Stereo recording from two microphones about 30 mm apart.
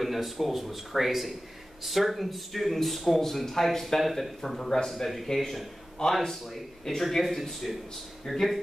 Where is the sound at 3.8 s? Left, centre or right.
Centre.